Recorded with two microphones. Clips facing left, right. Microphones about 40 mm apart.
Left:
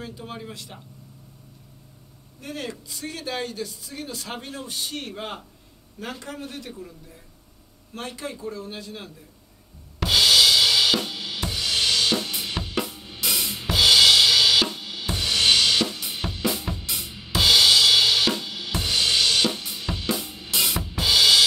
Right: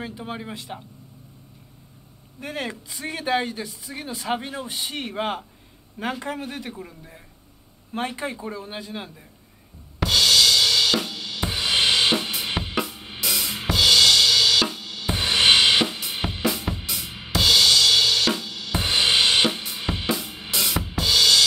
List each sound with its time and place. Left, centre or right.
0.0 s speech: right
2.4 s speech: right
10.0 s drum kit: centre
11.4 s drum kit: right
13.2 s music: centre
13.7 s drum kit: centre
15.0 s drum kit: right
16.4 s music: centre
16.8 s drum: centre
17.3 s drum kit: centre
18.4 s cymbal: centre
18.8 s drum kit: right
20.1 s drum kit: centre